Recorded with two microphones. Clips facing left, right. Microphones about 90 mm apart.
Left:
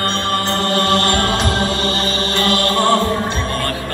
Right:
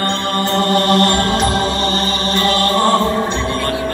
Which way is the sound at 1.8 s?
25° right (ahead or behind).